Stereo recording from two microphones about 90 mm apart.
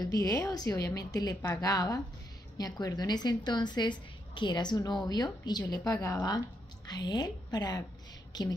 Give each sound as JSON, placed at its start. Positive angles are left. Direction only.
{"t": 0.0, "sound": "a woman's voice", "side_deg": 40}